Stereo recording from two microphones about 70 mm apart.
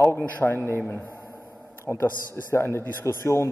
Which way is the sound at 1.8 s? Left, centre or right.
Left.